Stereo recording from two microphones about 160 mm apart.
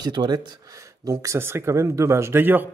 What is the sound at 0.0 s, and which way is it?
A man's voice, 25° right (ahead or behind).